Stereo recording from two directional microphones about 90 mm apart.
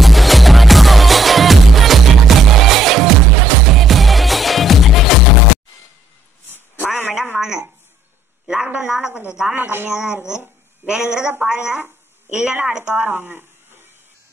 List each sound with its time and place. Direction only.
0.0 s music: centre (ahead or behind)
7.3 s a sound: 5° right (ahead or behind)
9.3 s speech: 5° right (ahead or behind)
9.6 s speech: 25° right (ahead or behind)
9.9 s a woman's voice: 10° right (ahead or behind)
12.9 s a sound: 20° right (ahead or behind)